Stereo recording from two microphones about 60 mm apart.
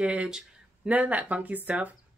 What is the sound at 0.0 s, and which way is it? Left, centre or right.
Speech, centre.